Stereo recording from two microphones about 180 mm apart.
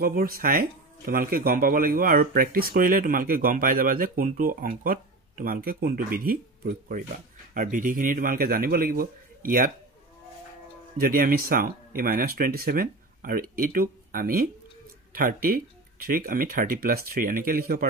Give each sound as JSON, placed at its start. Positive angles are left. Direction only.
{"t": 0.0, "sound": "speech", "side_deg": -55}
{"t": 11.0, "sound": "speech", "side_deg": -55}